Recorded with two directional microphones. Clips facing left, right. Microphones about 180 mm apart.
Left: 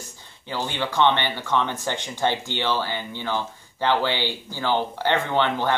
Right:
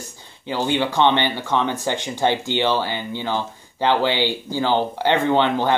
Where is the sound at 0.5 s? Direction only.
15° right (ahead or behind).